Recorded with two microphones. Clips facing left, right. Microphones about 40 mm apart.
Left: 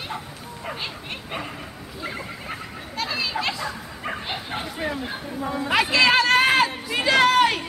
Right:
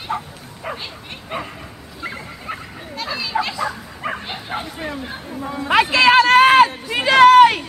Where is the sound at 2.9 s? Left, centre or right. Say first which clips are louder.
Right 3 dB; centre.